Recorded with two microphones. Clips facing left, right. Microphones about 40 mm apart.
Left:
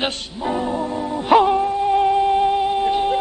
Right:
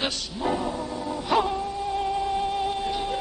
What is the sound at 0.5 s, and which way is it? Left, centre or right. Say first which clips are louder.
Music: left 6 dB; left.